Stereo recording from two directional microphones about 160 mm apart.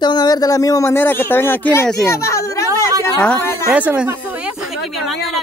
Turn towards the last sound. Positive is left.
turn(degrees=-10)  # may be behind; listen again after turning